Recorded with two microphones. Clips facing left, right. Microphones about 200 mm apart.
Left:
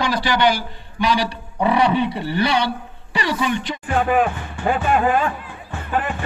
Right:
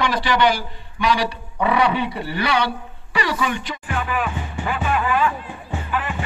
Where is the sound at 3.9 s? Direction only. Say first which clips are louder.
Left 7 dB; 50° left (ahead or behind).